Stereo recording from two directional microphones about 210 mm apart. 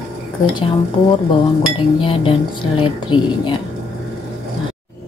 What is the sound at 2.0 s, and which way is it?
A woman's voice, 25° left (ahead or behind).